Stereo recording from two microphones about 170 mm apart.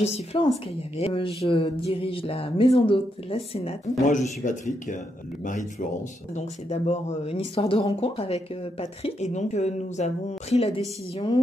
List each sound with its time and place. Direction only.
0.0 s speech: 40° left (ahead or behind)